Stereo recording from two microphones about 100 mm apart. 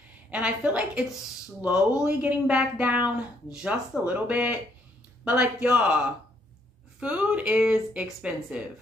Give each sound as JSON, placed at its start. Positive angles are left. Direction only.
{"t": 0.3, "sound": "speech", "side_deg": -10}